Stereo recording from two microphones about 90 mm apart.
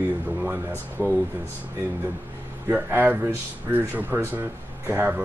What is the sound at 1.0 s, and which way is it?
Speech, 25° right (ahead or behind).